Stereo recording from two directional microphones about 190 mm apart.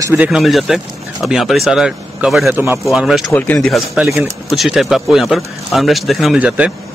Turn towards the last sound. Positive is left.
turn(degrees=-5)  # may be behind; listen again after turning